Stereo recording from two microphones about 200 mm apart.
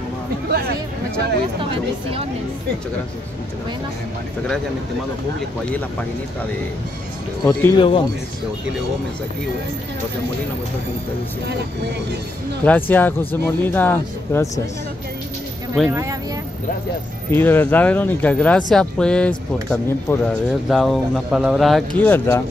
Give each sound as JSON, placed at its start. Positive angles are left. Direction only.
{"t": 0.5, "sound": "a sound", "side_deg": -50}
{"t": 1.6, "sound": "speech", "side_deg": -30}
{"t": 7.4, "sound": "speech", "side_deg": 20}
{"t": 12.6, "sound": "speech", "side_deg": 10}
{"t": 15.9, "sound": "speech", "side_deg": -15}
{"t": 17.3, "sound": "a man's voice", "side_deg": 10}